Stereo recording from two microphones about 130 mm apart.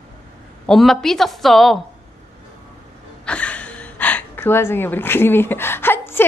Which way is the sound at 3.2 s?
10° left (ahead or behind).